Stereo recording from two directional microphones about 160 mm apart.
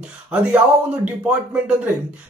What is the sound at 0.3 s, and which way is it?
Speech, 10° right (ahead or behind).